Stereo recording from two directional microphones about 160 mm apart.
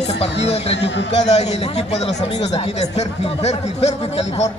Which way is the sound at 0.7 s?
90° left.